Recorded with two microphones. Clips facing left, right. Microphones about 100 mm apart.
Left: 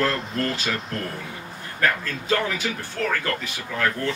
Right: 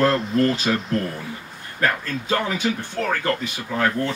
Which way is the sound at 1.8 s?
25° right (ahead or behind).